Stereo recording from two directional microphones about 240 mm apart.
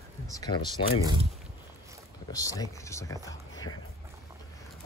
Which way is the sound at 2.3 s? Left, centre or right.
Centre.